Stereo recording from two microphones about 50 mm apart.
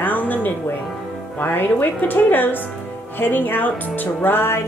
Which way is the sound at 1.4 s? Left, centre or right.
Left.